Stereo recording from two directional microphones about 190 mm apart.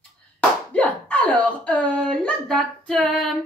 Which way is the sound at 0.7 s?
5° left (ahead or behind).